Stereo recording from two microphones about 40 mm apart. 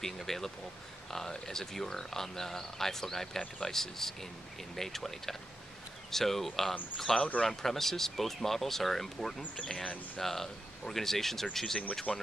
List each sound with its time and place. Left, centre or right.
0.0 s speech: centre
9.6 s speech: centre
12.1 s speech: left